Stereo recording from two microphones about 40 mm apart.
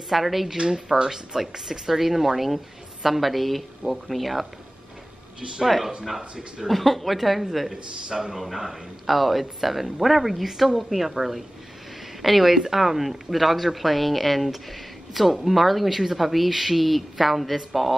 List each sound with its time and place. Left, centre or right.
0.1 s speech: centre
0.6 s speech: centre
5.7 s speech: centre
7.7 s speech: centre